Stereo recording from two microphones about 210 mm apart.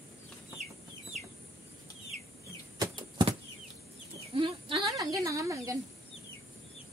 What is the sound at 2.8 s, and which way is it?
Bird flight, 20° right (ahead or behind).